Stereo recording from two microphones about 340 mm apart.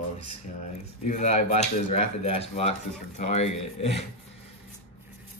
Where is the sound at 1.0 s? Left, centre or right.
Left.